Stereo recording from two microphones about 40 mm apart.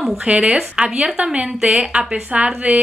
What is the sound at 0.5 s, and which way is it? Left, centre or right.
A woman's voice, right.